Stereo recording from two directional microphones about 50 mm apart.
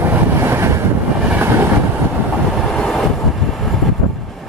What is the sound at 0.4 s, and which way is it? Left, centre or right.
Vehicle, right.